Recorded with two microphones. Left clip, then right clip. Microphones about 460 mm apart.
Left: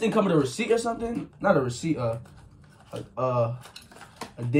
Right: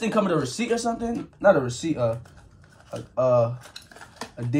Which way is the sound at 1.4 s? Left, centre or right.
Centre.